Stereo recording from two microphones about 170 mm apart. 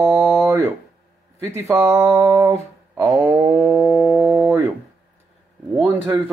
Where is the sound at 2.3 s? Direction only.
15° right (ahead or behind).